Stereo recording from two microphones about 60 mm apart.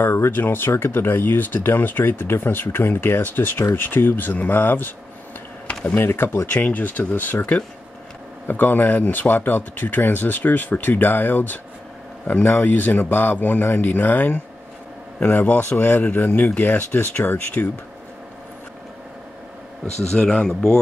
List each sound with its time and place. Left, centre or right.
0.0 s speech: left
5.9 s speech: left
6.5 s speech: left
20.1 s speech: centre